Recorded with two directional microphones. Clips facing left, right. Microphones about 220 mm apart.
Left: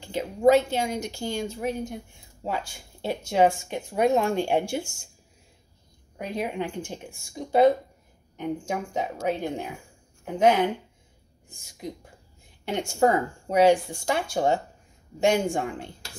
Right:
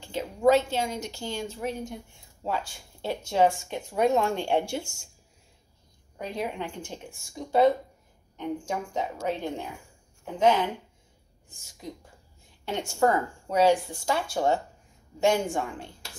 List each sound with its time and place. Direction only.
0.0 s a sound: 10° left (ahead or behind)
0.5 s speech: 15° left (ahead or behind)
6.1 s speech: 15° left (ahead or behind)